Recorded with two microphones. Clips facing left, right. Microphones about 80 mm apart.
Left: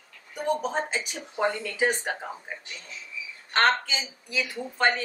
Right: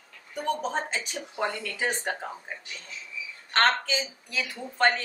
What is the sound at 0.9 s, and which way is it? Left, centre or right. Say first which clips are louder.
Speech: left 1 dB; centre.